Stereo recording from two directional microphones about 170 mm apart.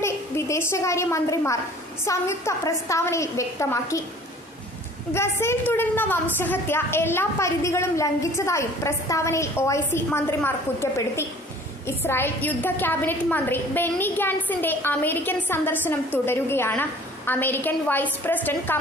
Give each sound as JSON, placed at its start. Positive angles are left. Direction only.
{"t": 0.0, "sound": "a woman's voice", "side_deg": 15}
{"t": 5.1, "sound": "a woman's voice", "side_deg": 15}